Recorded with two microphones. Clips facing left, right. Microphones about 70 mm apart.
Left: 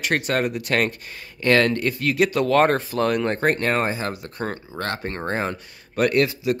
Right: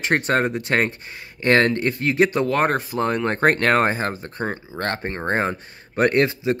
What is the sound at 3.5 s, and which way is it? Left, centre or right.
Speech, right.